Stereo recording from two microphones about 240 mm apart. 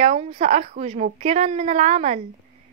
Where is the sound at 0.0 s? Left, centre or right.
Right.